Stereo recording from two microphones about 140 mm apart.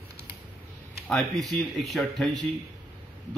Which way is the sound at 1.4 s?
Centre (ahead or behind).